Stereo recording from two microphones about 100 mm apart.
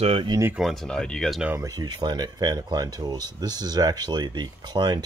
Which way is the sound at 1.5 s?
40° right (ahead or behind).